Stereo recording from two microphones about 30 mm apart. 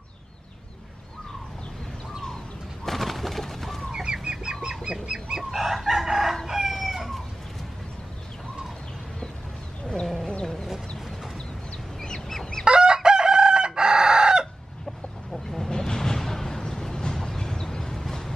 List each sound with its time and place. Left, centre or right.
2.8 s a sound: centre
3.9 s chicken: right
5.0 s goose: right
5.4 s chicken: centre
10.4 s chicken: centre
12.6 s chicken: right
15.7 s vehicle: centre
17.0 s a sound: centre
17.9 s a sound: centre